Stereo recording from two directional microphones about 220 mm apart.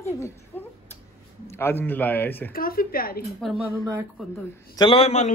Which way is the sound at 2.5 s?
40° left (ahead or behind).